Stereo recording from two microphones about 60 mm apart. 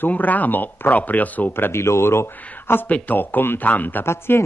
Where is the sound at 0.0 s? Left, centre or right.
Left.